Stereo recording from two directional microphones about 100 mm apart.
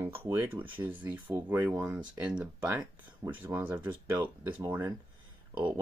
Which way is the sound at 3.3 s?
25° right (ahead or behind).